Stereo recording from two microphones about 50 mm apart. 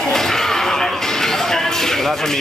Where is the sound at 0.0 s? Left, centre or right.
Centre.